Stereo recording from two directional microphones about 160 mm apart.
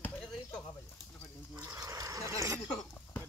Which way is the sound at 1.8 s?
20° right (ahead or behind).